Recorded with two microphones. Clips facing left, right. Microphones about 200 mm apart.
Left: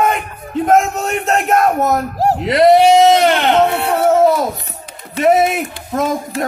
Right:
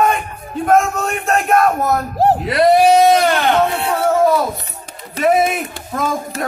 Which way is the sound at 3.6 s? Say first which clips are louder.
Left 3 dB; 60° left (ahead or behind).